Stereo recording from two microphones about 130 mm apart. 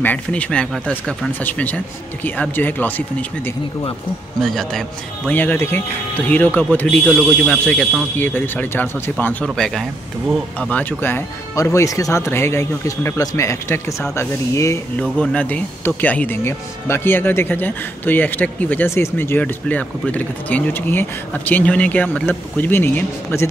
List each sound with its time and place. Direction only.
0.0 s speech: 10° left (ahead or behind)
4.4 s speech: 5° left (ahead or behind)
5.3 s speech: 15° left (ahead or behind)
15.0 s speech: 10° left (ahead or behind)